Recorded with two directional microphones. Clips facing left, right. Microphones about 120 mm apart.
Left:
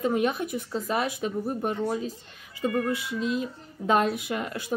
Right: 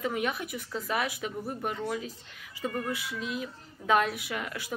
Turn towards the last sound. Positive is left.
turn(degrees=30)  # may be behind; listen again after turning